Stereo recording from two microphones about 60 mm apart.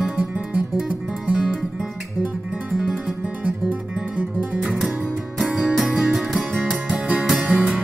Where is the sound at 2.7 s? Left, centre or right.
Centre.